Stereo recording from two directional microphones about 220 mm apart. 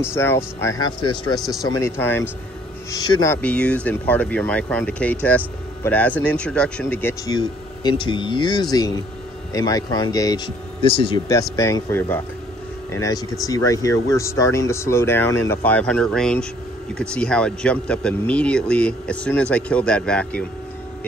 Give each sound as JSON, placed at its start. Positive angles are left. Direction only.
{"t": 0.1, "sound": "speech", "side_deg": 10}